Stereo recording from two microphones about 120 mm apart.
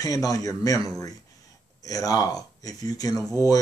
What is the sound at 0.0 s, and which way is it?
Speech, 30° left (ahead or behind).